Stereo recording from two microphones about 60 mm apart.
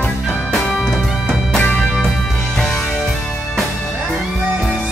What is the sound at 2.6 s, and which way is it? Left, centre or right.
Music, centre.